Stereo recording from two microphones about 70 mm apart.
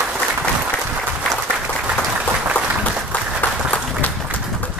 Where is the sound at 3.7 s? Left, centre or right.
Left.